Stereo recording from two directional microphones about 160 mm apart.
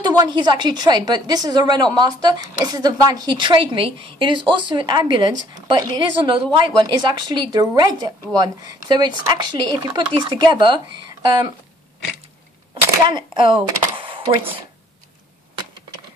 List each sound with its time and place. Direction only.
0.0 s a woman's voice: 25° right (ahead or behind)
13.0 s speech: 30° right (ahead or behind)